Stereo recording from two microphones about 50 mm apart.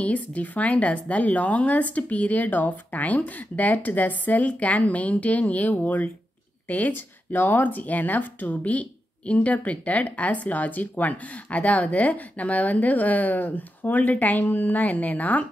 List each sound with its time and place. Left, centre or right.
0.0 s speech: left